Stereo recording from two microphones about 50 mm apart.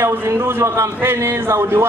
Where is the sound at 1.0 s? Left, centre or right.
Right.